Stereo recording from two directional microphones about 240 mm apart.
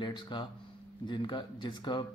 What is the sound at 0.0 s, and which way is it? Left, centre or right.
Speech, centre.